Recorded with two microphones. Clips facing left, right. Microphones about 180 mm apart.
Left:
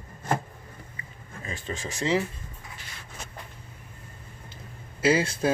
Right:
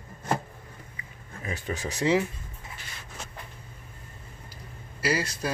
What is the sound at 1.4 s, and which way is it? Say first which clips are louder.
Speech: right 2 dB; 15° right (ahead or behind).